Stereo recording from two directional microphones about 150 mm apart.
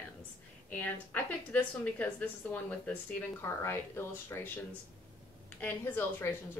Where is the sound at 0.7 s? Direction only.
10° left (ahead or behind).